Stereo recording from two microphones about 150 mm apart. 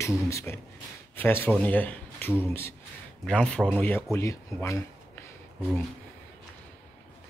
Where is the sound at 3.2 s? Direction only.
5° left (ahead or behind).